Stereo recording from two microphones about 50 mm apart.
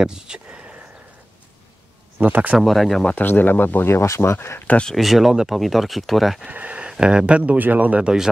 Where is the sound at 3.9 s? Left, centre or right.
Left.